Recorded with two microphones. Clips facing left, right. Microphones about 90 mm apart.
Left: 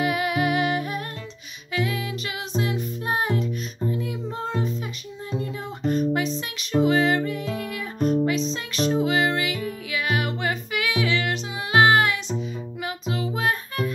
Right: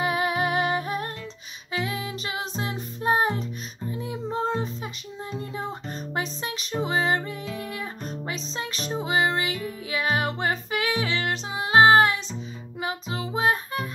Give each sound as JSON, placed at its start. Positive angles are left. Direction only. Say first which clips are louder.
{"t": 0.0, "sound": "music", "louder": "left 1 dB", "side_deg": -30}